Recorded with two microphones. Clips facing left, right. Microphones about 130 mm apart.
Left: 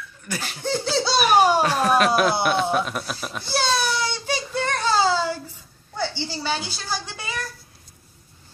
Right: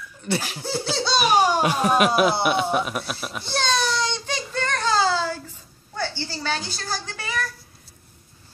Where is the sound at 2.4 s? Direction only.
5° right (ahead or behind).